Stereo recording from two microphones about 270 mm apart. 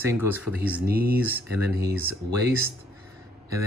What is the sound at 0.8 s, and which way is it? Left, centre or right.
Speech, right.